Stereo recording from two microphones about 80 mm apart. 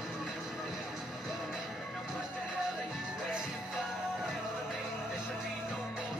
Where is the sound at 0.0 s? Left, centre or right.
Centre.